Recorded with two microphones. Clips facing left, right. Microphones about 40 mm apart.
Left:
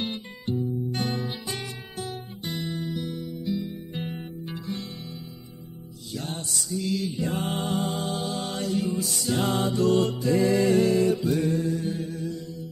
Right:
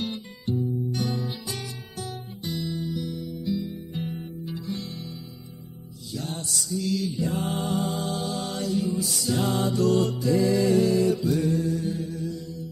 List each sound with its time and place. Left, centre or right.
0.0 s music: left
2.5 s music: left
4.5 s music: left
6.1 s music: left
8.7 s music: left
11.1 s music: left